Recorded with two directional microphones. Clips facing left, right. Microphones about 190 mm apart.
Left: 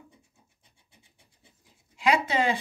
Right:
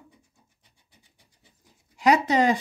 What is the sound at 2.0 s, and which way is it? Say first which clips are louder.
Speech: right 5 dB; 40° right (ahead or behind).